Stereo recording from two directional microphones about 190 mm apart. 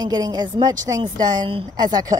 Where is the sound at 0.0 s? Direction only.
20° right (ahead or behind).